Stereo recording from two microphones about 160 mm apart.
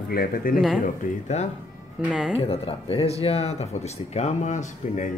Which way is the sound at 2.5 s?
40° left (ahead or behind).